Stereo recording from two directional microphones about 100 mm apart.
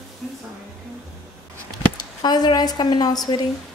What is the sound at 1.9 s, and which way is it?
Speech, 45° left (ahead or behind).